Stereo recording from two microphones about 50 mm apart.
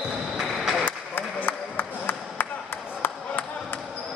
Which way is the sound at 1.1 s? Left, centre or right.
Left.